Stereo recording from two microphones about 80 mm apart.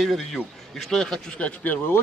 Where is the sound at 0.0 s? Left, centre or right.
Centre.